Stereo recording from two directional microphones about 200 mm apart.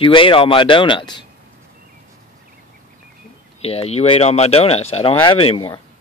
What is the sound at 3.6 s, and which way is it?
Speech, 30° left (ahead or behind).